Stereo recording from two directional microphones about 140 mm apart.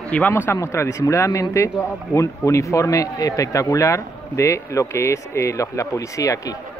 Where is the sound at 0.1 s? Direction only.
10° left (ahead or behind).